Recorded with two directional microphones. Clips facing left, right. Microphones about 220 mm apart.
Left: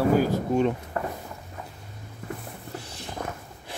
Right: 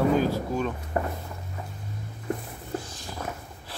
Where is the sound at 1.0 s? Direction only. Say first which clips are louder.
Right 2 dB; 20° right (ahead or behind).